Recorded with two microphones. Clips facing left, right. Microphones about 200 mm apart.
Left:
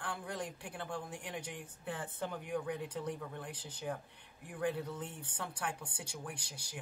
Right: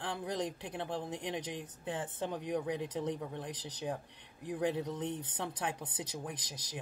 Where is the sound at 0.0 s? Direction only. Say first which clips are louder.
Right 5 dB; 20° right (ahead or behind).